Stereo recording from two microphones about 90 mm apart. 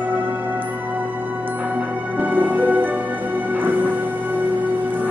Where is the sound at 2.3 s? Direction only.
20° right (ahead or behind).